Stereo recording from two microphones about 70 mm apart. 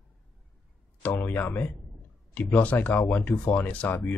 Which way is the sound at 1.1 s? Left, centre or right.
Left.